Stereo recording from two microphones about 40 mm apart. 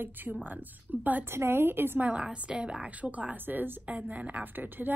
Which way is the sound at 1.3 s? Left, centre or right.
Right.